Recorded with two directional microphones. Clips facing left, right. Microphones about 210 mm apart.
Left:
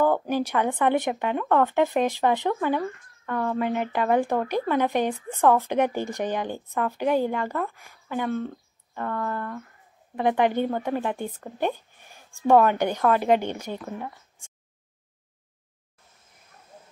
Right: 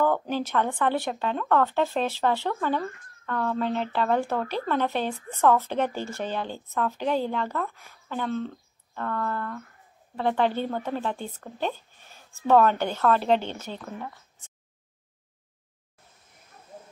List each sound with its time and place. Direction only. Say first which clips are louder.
0.0 s speech: left 2 dB; 10° left (ahead or behind)